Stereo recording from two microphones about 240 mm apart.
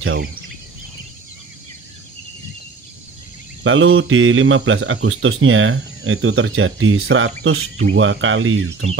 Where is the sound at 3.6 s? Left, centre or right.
Right.